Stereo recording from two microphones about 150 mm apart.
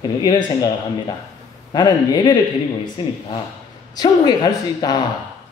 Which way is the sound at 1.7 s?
30° left (ahead or behind).